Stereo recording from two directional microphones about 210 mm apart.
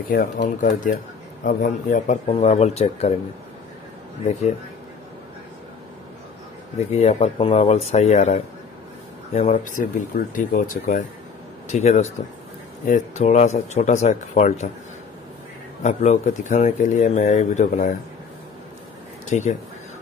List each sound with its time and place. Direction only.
0.1 s speech: 45° left (ahead or behind)
6.9 s speech: 30° left (ahead or behind)
15.8 s speech: 35° left (ahead or behind)
19.2 s speech: 35° left (ahead or behind)